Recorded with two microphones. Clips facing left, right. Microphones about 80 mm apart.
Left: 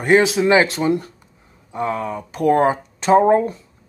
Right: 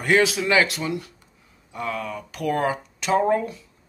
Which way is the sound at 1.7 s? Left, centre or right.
Left.